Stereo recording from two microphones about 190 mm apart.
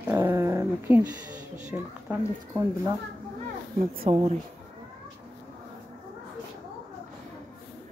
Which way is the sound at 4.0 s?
30° right (ahead or behind).